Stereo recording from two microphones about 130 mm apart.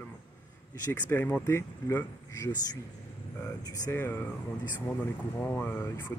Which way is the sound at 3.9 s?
15° left (ahead or behind).